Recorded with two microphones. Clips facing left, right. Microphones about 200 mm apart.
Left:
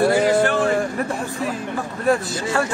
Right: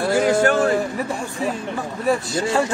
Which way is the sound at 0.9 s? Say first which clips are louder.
Left 1 dB; centre (ahead or behind).